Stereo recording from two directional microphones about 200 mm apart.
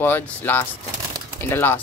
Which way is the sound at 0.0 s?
10° left (ahead or behind).